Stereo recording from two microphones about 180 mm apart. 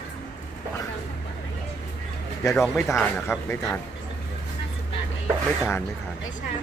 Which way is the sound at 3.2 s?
15° left (ahead or behind).